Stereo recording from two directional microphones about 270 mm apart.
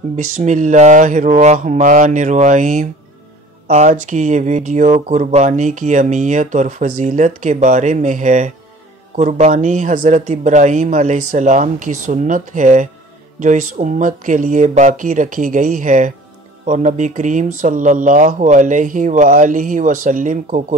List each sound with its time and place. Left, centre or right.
0.4 s speech: right